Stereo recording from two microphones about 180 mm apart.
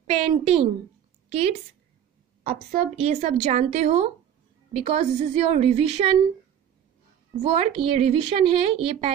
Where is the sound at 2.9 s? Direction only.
35° right (ahead or behind).